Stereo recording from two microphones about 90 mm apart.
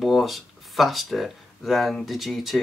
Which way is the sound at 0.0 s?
Centre (ahead or behind).